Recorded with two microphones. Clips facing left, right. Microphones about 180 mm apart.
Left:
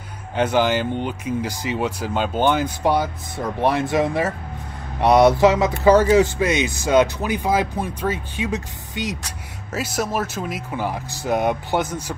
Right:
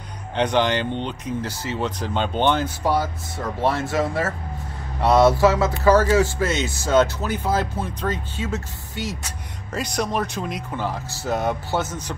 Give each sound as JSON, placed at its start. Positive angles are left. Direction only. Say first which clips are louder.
{"t": 0.4, "sound": "speech", "louder": "left 2 dB", "side_deg": 5}
{"t": 9.7, "sound": "speech", "louder": "left 1 dB", "side_deg": 5}